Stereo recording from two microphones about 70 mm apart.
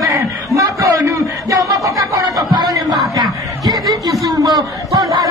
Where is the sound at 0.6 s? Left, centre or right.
Right.